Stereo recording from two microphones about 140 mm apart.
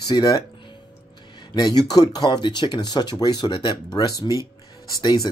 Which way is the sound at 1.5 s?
30° left (ahead or behind).